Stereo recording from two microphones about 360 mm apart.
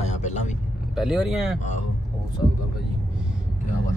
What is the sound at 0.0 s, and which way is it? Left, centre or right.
Vehicle, centre.